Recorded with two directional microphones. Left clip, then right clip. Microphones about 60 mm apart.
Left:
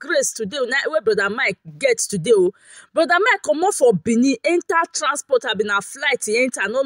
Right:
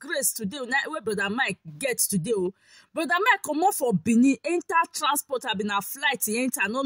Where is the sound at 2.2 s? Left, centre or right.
Left.